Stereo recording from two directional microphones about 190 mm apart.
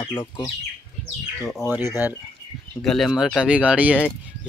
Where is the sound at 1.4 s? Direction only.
Centre (ahead or behind).